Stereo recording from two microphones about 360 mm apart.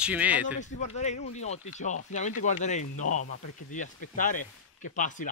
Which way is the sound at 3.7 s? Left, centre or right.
Left.